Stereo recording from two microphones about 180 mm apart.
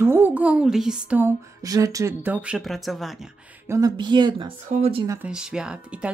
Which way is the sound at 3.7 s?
20° right (ahead or behind).